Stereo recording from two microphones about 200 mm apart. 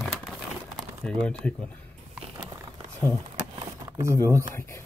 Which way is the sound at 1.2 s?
5° left (ahead or behind).